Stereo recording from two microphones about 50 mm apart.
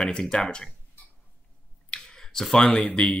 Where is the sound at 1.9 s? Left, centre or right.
Centre.